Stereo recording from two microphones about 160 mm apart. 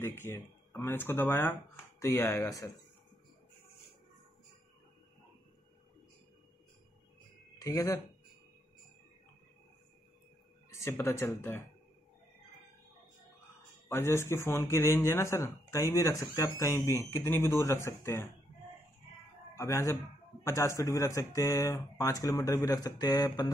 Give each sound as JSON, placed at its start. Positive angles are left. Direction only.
{"t": 0.2, "sound": "speech", "side_deg": 15}
{"t": 7.5, "sound": "speech", "side_deg": 20}
{"t": 10.7, "sound": "speech", "side_deg": 15}
{"t": 13.8, "sound": "speech", "side_deg": 15}
{"t": 19.5, "sound": "speech", "side_deg": 15}